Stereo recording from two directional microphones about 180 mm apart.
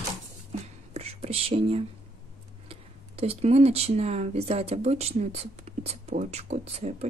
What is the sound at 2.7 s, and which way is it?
Speech, 35° right (ahead or behind).